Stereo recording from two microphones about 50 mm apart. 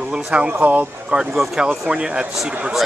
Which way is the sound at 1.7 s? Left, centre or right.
Centre.